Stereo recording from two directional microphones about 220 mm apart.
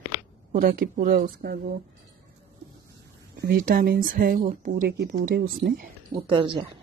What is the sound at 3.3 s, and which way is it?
Speech, 45° right (ahead or behind).